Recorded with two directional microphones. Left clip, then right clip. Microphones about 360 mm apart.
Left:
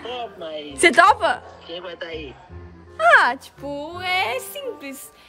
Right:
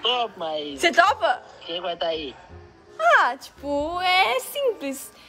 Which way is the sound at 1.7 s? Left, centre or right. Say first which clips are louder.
Right 6 dB; centre.